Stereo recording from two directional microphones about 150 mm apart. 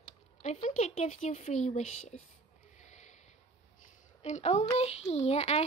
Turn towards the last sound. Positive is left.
turn(degrees=45)  # may be behind; listen again after turning